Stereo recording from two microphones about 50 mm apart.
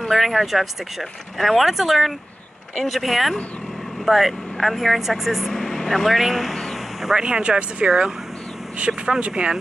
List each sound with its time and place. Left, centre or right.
0.1 s speech: centre
5.5 s speech: centre
6.1 s speech: centre
7.2 s speech: centre